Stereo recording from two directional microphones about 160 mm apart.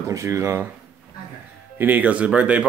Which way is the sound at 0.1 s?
20° right (ahead or behind).